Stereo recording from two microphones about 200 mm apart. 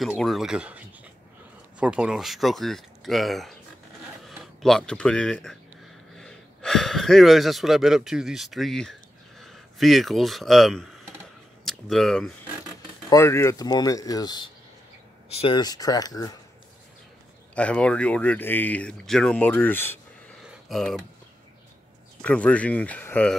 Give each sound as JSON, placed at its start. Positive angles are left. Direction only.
{"t": 0.0, "sound": "speech", "side_deg": 0}
{"t": 13.1, "sound": "speech", "side_deg": 15}
{"t": 17.6, "sound": "speech", "side_deg": 5}
{"t": 20.4, "sound": "a sound", "side_deg": 0}
{"t": 22.2, "sound": "speech", "side_deg": 5}